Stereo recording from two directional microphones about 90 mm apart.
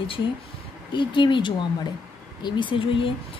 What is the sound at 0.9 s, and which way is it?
A woman's voice, 60° left (ahead or behind).